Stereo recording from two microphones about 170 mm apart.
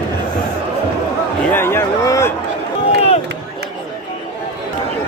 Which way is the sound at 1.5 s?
15° left (ahead or behind).